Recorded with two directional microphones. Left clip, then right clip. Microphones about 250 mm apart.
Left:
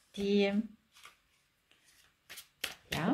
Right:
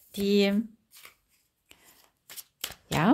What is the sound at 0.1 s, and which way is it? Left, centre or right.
Speech, right.